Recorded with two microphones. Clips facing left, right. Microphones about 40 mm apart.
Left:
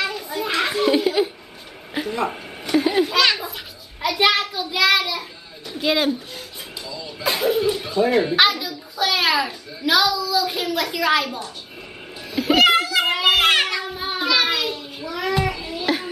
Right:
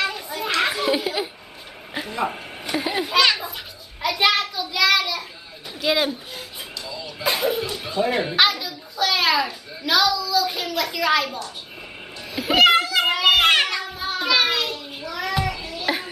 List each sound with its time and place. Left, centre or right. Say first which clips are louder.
0.0 s children playing: left 1 dB; centre
0.6 s a sound: left 3 dB; centre
4.0 s a child's voice: left 1 dB; centre
12.4 s children playing: even; centre
13.9 s child singing: even; centre
14.2 s child singing: even; centre